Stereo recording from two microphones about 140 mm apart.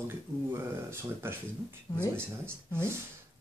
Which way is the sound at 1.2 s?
15° right (ahead or behind).